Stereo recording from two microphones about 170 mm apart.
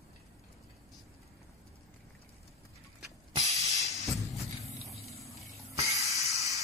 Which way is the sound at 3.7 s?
Centre (ahead or behind).